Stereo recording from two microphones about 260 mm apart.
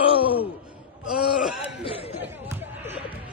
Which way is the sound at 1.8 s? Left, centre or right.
Left.